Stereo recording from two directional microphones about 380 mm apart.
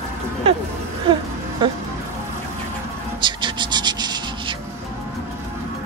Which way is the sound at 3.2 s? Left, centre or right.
Centre.